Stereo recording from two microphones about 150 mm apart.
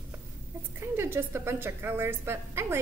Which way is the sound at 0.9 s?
15° right (ahead or behind).